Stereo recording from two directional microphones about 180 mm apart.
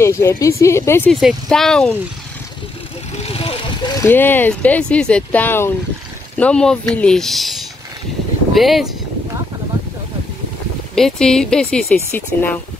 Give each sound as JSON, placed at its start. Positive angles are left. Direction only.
{"t": 0.0, "sound": "speech", "side_deg": 15}
{"t": 1.1, "sound": "speech", "side_deg": 0}
{"t": 3.2, "sound": "vehicle", "side_deg": 35}
{"t": 4.1, "sound": "speech", "side_deg": 10}
{"t": 11.0, "sound": "speech", "side_deg": 5}